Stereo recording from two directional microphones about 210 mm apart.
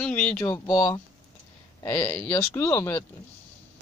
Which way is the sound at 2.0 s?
5° left (ahead or behind).